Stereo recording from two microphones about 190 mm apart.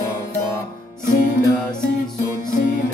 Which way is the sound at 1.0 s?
45° left (ahead or behind).